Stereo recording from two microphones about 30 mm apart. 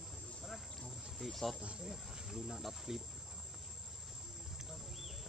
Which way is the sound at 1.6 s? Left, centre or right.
Right.